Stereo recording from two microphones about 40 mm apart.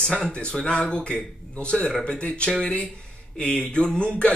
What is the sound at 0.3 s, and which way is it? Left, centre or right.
A man's voice, left.